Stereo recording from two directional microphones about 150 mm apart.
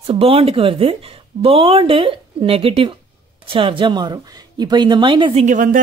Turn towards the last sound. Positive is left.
turn(degrees=-60)  # may be behind; listen again after turning